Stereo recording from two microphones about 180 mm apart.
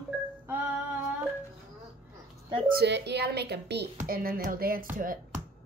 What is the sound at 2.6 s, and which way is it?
A woman's voice, 65° right (ahead or behind).